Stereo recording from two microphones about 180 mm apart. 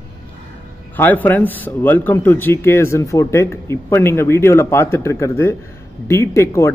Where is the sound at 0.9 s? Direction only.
10° left (ahead or behind).